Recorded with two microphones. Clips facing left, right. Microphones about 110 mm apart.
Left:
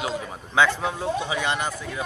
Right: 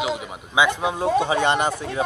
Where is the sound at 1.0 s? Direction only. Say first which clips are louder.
Right 9 dB; 50° right (ahead or behind).